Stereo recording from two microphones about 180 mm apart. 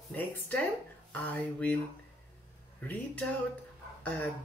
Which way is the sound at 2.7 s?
10° left (ahead or behind).